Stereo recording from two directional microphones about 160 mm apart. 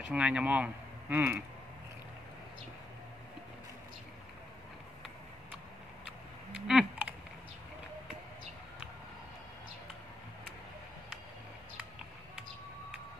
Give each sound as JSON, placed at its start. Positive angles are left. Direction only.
{"t": 0.0, "sound": "speech", "side_deg": -5}
{"t": 6.5, "sound": "typing", "side_deg": -5}
{"t": 11.7, "sound": "a sound", "side_deg": -5}